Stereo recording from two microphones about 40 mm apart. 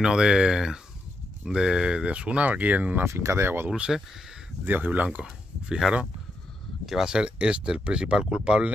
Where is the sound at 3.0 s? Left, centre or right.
Right.